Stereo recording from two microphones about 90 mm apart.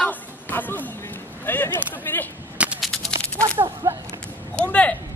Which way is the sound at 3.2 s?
15° left (ahead or behind).